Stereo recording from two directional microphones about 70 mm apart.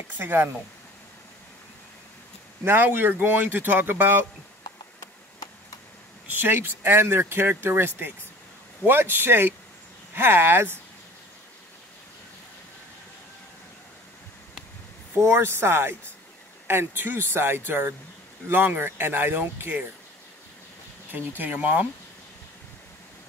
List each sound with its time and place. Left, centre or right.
0.2 s speech: right
2.6 s speech: right
6.2 s speech: right
15.2 s speech: right
21.4 s speech: right